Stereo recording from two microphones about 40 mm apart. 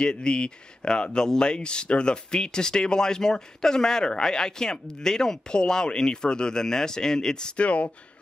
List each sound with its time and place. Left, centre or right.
0.0 s speech: left
7.5 s speech: left